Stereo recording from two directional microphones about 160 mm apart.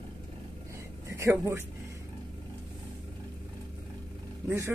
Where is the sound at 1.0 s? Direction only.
20° right (ahead or behind).